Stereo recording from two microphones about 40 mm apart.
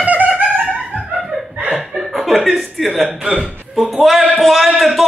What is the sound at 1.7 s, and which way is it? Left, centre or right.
Chuckle, centre.